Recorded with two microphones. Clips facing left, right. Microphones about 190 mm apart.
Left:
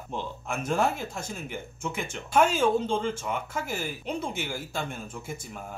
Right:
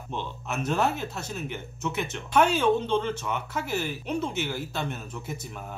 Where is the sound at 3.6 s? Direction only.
50° left (ahead or behind).